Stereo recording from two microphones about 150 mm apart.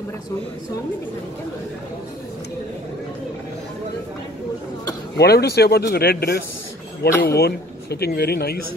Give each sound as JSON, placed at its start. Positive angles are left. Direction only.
{"t": 5.1, "sound": "speech", "side_deg": 90}